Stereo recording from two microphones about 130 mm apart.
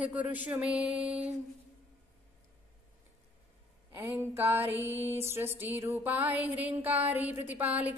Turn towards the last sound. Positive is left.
turn(degrees=-10)  # may be behind; listen again after turning